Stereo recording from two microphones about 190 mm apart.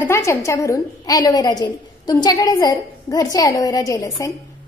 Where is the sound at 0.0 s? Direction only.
15° left (ahead or behind).